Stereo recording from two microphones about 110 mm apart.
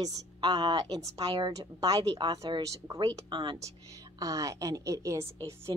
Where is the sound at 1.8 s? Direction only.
40° right (ahead or behind).